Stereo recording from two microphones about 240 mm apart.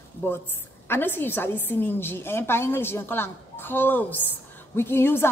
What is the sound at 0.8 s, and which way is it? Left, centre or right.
A woman's voice, centre.